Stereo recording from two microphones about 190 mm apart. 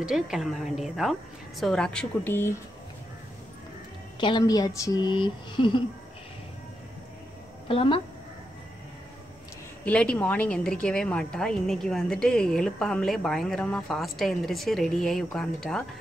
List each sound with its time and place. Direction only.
0.0 s a woman's voice: centre (ahead or behind)
4.2 s speech: 20° left (ahead or behind)
7.6 s speech: 30° left (ahead or behind)
9.8 s a woman's voice: 5° left (ahead or behind)